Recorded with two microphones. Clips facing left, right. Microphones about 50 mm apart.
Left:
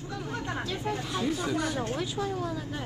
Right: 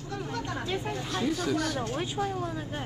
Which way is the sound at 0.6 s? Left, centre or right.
Right.